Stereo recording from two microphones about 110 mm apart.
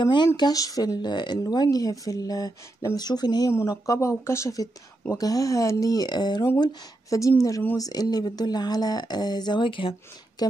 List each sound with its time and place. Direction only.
0.0 s speech: 45° left (ahead or behind)
6.6 s speech: 30° left (ahead or behind); by 9.9 s 50° left (ahead or behind)
10.4 s speech: 35° left (ahead or behind)